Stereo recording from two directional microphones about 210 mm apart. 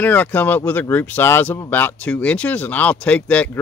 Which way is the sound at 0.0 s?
10° left (ahead or behind).